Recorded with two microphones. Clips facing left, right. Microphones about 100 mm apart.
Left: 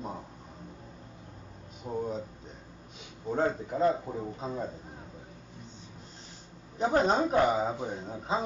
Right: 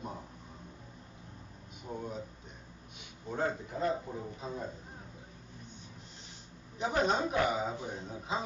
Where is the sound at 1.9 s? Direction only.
25° left (ahead or behind).